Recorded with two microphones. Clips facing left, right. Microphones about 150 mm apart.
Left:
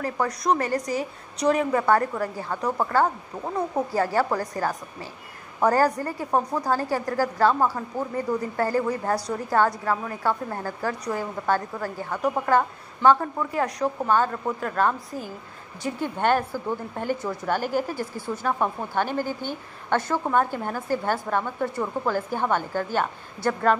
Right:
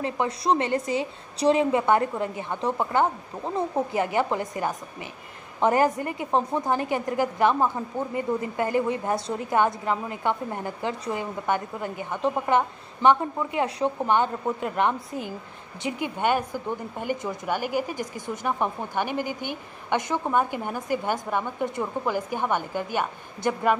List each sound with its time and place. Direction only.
0.0 s a woman's voice: 25° right (ahead or behind)
3.9 s a woman's voice: 20° right (ahead or behind)